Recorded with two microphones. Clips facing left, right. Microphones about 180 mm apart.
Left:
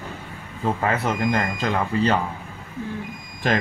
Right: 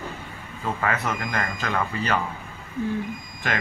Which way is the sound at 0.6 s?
30° left (ahead or behind).